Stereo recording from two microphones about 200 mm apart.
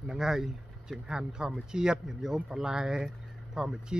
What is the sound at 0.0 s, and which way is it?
Speech, 5° right (ahead or behind).